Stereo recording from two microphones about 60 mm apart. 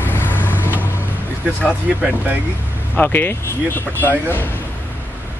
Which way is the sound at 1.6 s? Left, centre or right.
Left.